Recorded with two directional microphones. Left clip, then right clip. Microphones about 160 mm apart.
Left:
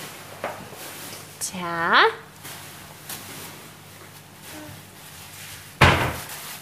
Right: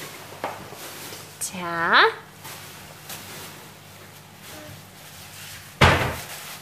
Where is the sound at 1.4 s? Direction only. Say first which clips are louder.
Even; 5° left (ahead or behind).